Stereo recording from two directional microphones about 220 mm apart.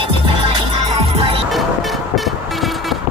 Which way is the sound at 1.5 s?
Centre (ahead or behind).